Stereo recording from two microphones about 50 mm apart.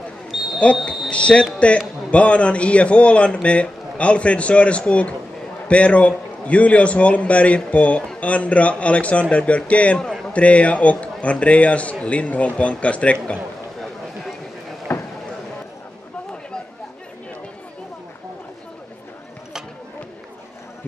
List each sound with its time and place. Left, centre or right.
0.3 s a sound: centre
1.1 s a man's voice: left
14.9 s vehicle: left